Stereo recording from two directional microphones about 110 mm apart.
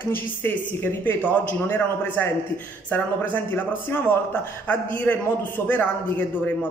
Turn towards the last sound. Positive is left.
turn(degrees=15)  # may be behind; listen again after turning